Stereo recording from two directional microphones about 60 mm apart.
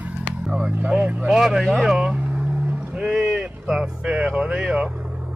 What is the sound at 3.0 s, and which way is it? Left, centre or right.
Boat, centre.